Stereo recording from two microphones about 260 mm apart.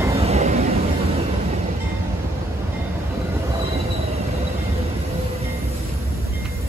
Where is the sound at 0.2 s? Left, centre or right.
Right.